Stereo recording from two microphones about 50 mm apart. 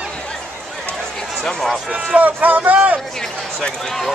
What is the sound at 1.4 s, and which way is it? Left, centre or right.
Speech, centre.